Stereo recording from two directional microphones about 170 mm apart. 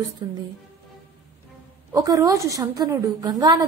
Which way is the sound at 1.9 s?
20° right (ahead or behind).